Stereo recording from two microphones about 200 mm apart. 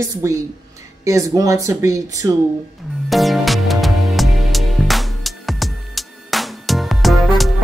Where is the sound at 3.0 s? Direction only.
Centre (ahead or behind).